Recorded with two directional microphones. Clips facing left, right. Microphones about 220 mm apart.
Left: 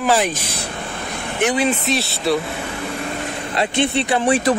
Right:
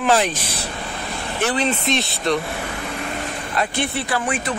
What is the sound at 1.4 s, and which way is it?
Speech, 15° left (ahead or behind).